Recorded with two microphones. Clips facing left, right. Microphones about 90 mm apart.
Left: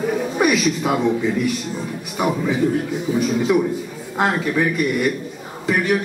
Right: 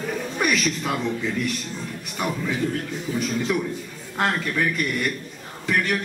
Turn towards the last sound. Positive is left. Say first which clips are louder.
# left 5 dB
turn(degrees=10)  # may be behind; listen again after turning